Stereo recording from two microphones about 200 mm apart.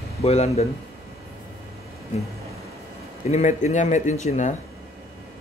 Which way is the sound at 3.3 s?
35° left (ahead or behind).